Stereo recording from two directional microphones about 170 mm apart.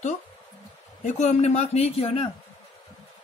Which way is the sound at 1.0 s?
40° left (ahead or behind).